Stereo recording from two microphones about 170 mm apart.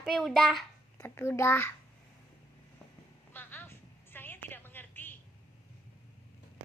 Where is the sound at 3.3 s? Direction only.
15° left (ahead or behind).